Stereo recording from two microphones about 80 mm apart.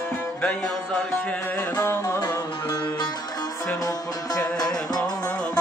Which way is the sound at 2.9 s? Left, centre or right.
Left.